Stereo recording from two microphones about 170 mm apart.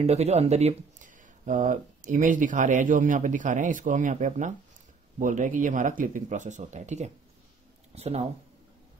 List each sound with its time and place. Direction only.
0.0 s speech: 40° right (ahead or behind)